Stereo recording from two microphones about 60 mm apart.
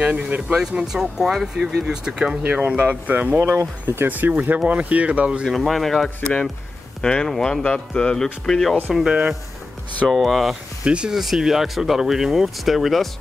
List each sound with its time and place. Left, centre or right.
0.0 s speech: centre
3.3 s speech: right
4.3 s speech: right
5.4 s speech: centre
6.0 s speech: centre
10.0 s speech: centre
10.8 s speech: centre
11.1 s speech: centre